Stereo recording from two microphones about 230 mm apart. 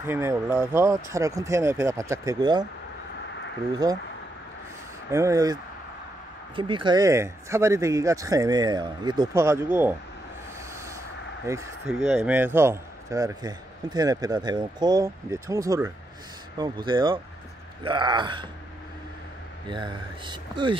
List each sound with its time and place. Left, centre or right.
0.0 s a man's voice: centre
5.1 s a man's voice: centre
11.4 s a man's voice: centre
19.7 s speech: centre